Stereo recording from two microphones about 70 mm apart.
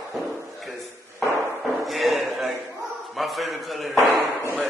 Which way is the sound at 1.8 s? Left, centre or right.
Centre.